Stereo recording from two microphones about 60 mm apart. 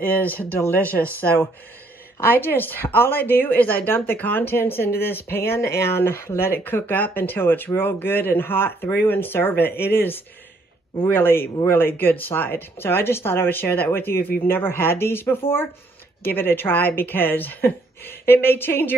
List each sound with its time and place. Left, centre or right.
0.0 s speech: left